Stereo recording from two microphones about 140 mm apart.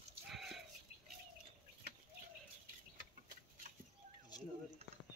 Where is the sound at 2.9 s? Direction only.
70° right (ahead or behind).